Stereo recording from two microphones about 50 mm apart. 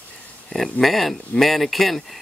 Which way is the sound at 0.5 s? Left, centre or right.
Centre.